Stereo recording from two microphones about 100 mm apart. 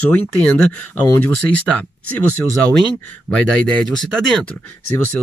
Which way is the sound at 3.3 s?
10° left (ahead or behind).